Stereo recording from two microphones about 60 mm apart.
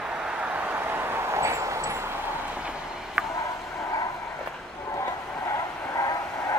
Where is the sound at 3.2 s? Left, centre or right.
Centre.